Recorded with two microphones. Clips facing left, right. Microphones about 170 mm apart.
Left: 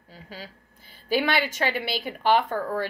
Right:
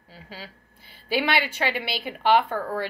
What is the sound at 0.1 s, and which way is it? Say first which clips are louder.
A woman's voice: even; 45° left (ahead or behind).